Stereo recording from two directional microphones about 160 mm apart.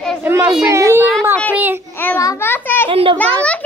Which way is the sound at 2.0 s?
15° left (ahead or behind).